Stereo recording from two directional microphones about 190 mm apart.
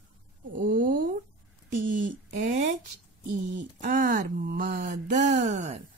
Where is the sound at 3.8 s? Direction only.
45° right (ahead or behind).